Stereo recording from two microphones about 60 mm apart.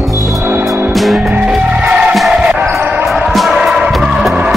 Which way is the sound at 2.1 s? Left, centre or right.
Centre.